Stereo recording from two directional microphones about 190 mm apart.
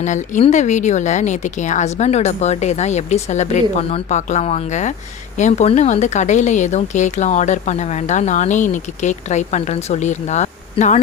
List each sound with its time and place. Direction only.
0.0 s speech: 40° left (ahead or behind)